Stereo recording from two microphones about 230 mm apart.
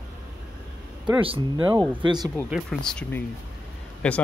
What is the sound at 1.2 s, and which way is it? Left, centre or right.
Speech, right.